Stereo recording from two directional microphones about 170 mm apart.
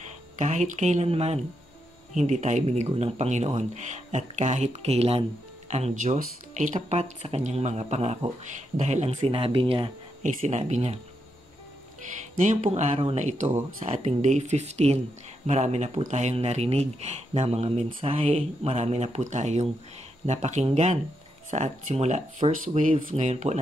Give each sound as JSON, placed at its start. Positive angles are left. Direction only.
{"t": 0.4, "sound": "speech", "side_deg": -45}
{"t": 9.2, "sound": "speech", "side_deg": -30}
{"t": 10.2, "sound": "speech", "side_deg": -45}
{"t": 12.4, "sound": "speech", "side_deg": -45}
{"t": 23.1, "sound": "speech", "side_deg": -40}